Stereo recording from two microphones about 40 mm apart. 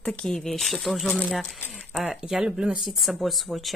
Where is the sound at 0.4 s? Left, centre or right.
Centre.